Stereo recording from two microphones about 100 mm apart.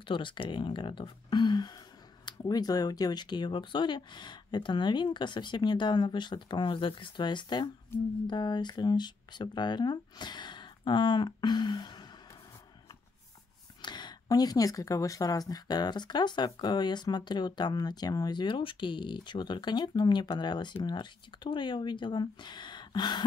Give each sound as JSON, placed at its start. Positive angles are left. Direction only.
{"t": 0.0, "sound": "speech", "side_deg": 55}
{"t": 13.7, "sound": "speech", "side_deg": 50}